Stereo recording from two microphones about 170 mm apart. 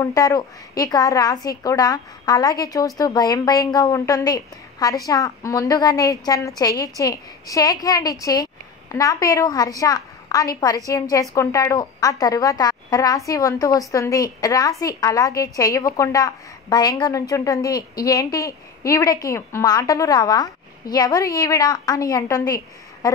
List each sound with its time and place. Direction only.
0.0 s a woman's voice: 20° left (ahead or behind)